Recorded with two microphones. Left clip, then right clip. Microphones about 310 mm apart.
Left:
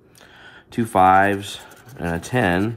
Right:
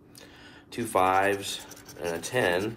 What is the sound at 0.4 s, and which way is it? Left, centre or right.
Speech, centre.